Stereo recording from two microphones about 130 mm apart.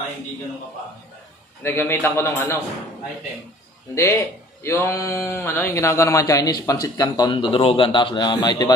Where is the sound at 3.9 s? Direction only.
25° left (ahead or behind).